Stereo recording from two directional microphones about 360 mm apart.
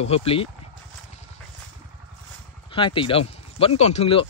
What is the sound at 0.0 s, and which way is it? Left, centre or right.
Speech, centre.